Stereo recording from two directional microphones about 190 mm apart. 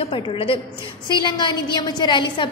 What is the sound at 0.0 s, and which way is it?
A woman's voice, 30° left (ahead or behind).